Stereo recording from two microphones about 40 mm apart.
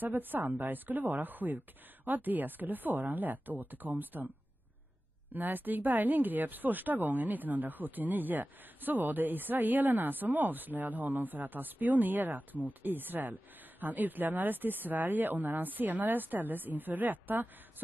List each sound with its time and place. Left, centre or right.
0.0 s speech: right
5.3 s speech: right